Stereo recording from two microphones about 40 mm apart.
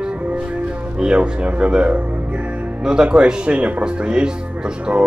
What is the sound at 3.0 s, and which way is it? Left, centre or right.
Speech, right.